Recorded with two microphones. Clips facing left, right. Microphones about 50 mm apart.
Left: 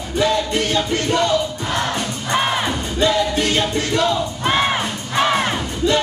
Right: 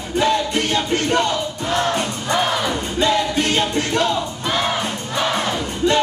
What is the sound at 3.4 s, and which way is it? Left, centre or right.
Music, right.